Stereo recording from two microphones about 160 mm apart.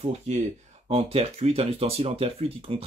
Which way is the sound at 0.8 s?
40° right (ahead or behind).